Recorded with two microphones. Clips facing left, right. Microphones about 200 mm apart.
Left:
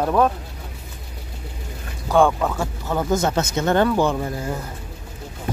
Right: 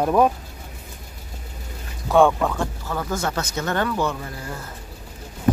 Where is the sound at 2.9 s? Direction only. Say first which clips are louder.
Left 8 dB; 20° left (ahead or behind).